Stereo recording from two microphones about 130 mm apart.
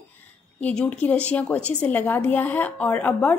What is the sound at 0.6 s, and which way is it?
A woman's voice, 10° left (ahead or behind).